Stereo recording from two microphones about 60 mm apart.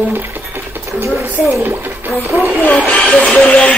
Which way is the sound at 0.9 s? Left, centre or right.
Right.